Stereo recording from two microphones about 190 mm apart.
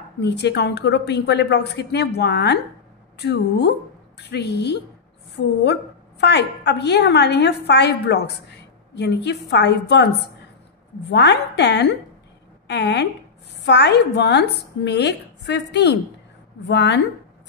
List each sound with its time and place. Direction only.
0.2 s a woman's voice: 65° left (ahead or behind)
11.1 s a woman's voice: 65° left (ahead or behind)